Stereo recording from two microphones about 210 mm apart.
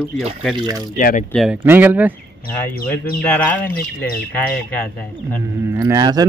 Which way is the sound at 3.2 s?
5° left (ahead or behind).